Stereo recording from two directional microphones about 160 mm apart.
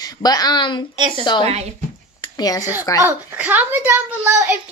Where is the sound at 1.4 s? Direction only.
40° right (ahead or behind).